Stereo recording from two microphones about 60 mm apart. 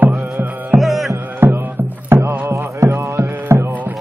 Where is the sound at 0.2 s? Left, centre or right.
Right.